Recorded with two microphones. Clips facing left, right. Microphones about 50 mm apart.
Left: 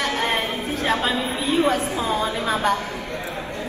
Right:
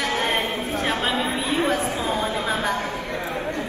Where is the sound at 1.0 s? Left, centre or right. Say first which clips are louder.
Even; right.